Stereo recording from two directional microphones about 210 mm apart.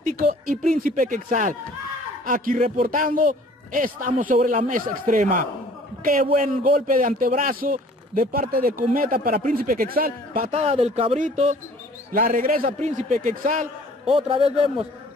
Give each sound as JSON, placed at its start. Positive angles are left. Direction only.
{"t": 0.0, "sound": "a man's voice", "side_deg": -40}
{"t": 10.5, "sound": "speech", "side_deg": -30}
{"t": 14.0, "sound": "a man's voice", "side_deg": -25}